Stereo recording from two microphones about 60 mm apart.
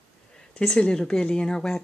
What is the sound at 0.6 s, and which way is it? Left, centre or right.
Speech, centre.